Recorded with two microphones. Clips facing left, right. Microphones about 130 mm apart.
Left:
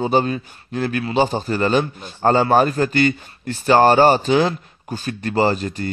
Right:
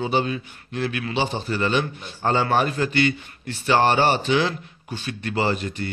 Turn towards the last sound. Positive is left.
turn(degrees=40)  # may be behind; listen again after turning